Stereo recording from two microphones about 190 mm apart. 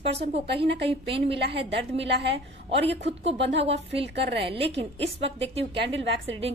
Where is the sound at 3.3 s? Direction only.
70° right (ahead or behind).